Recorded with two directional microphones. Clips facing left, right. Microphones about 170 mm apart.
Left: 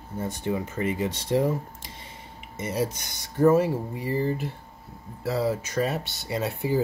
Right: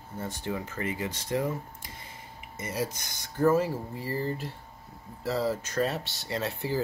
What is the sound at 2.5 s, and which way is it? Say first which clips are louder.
Speech: left 5 dB; 25° left (ahead or behind).